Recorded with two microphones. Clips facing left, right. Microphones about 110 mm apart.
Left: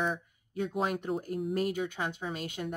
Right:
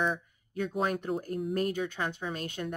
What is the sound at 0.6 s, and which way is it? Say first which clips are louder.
Speech: right 1 dB; 15° left (ahead or behind).